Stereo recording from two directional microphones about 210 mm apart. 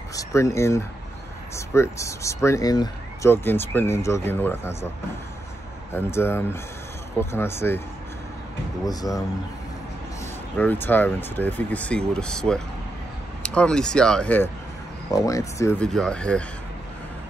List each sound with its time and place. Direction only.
0.1 s speech: 15° left (ahead or behind)
5.9 s speech: 10° left (ahead or behind)
8.8 s speech: 15° left (ahead or behind)
10.6 s speech: 10° left (ahead or behind)